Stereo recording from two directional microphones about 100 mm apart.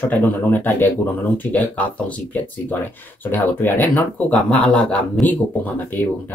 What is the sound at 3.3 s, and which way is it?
Speech, 20° left (ahead or behind).